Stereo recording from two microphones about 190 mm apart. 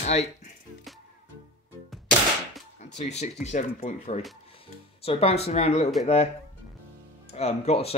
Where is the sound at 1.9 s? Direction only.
Centre (ahead or behind).